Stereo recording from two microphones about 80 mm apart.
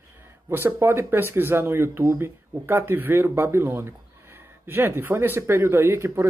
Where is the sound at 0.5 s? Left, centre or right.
Right.